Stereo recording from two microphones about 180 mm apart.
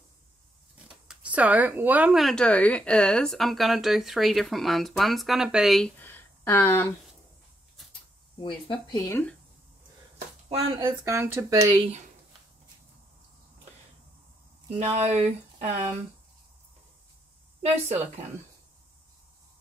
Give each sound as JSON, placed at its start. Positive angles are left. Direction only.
{"t": 0.8, "sound": "speech", "side_deg": -5}
{"t": 5.9, "sound": "a sound", "side_deg": 10}
{"t": 8.4, "sound": "speech", "side_deg": 30}
{"t": 10.5, "sound": "speech", "side_deg": -30}
{"t": 11.1, "sound": "speech", "side_deg": -15}
{"t": 14.8, "sound": "speech", "side_deg": -40}